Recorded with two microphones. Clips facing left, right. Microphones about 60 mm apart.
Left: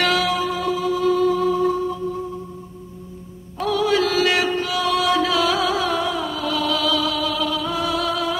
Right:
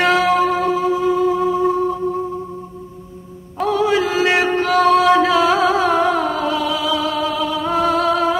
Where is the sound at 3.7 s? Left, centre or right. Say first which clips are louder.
Right 2 dB; right.